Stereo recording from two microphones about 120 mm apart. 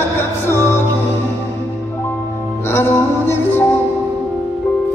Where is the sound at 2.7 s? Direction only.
20° left (ahead or behind).